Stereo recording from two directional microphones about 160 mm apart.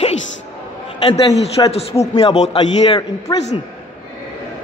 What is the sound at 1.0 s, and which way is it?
A man's voice, 35° left (ahead or behind).